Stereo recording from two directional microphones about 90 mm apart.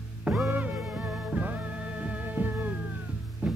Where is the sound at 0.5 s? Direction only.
20° right (ahead or behind).